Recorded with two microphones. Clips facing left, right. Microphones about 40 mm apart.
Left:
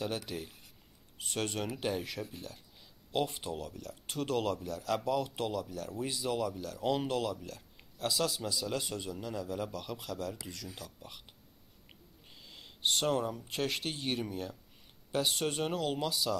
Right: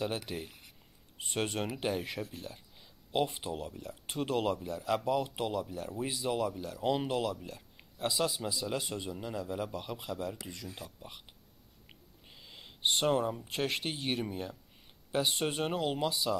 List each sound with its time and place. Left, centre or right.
0.0 s speech: centre
3.3 s speech: centre
12.3 s a sound: centre
13.5 s speech: centre